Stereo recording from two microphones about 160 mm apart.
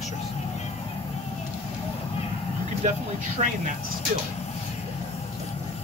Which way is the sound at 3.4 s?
50° right (ahead or behind).